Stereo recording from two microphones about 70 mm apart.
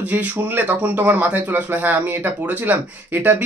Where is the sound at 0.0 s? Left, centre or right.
Right.